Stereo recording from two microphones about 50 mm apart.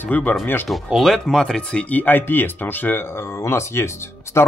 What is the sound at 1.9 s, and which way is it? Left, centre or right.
Speech, left.